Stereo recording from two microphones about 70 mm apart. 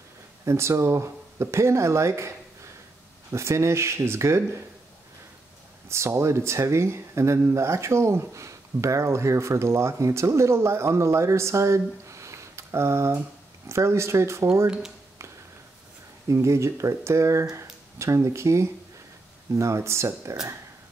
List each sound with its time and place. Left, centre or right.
0.5 s speech: right
5.9 s speech: right
16.3 s speech: right